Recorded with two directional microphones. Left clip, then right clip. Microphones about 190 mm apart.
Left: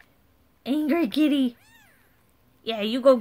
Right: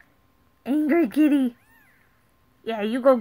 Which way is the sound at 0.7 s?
Centre (ahead or behind).